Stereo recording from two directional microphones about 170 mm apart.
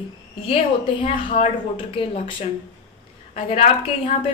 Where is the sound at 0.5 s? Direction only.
30° left (ahead or behind).